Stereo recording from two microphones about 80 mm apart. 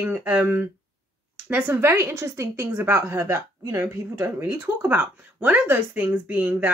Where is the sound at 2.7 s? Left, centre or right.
Right.